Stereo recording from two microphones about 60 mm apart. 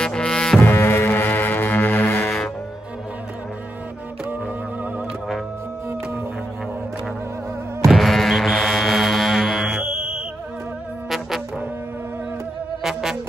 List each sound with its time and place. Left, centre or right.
0.0 s music: centre
0.6 s music: left
7.8 s a sound: centre
9.8 s music: centre
11.1 s music: centre
12.8 s music: centre